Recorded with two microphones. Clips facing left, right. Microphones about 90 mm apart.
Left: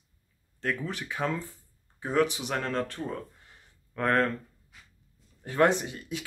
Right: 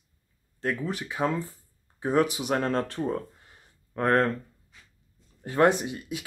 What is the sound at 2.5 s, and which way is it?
Speech, 25° right (ahead or behind).